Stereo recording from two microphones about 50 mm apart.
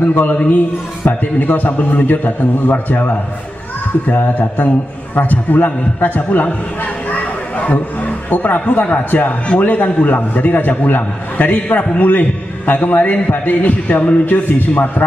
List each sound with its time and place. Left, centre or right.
0.0 s a man's voice: left